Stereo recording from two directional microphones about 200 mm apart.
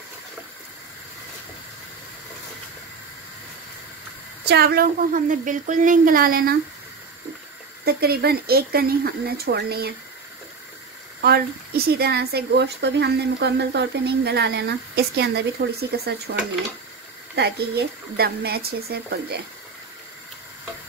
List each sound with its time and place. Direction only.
4.5 s speech: 50° right (ahead or behind)
7.8 s speech: 50° right (ahead or behind)
11.1 s speech: 55° right (ahead or behind)
17.4 s speech: 55° right (ahead or behind)